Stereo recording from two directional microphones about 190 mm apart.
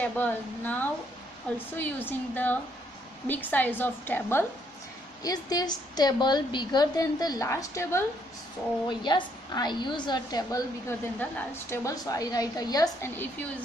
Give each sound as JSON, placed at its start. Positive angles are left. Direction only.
{"t": 0.0, "sound": "a woman's voice", "side_deg": 10}